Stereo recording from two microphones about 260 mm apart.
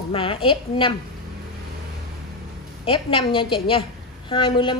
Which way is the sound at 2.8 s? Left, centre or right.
Centre.